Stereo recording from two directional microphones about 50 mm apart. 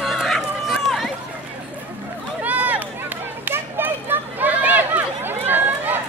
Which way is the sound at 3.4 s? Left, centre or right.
Right.